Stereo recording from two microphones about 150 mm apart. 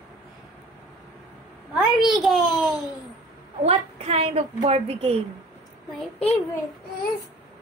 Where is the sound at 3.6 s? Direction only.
40° right (ahead or behind).